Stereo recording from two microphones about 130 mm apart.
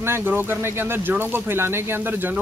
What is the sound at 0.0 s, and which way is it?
Speech, 20° right (ahead or behind).